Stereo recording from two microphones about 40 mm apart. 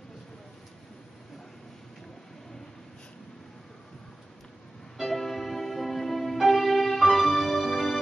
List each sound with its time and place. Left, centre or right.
4.9 s music: centre